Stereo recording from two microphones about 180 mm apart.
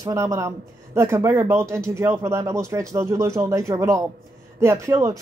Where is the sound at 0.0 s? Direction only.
20° right (ahead or behind).